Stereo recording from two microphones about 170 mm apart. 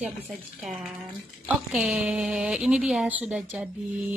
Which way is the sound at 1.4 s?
5° right (ahead or behind).